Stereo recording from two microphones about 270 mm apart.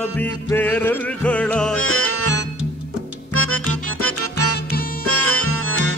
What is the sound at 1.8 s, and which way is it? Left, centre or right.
Music, left.